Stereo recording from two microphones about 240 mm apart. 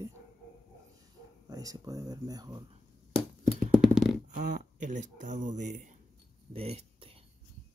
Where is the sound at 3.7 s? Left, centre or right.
Centre.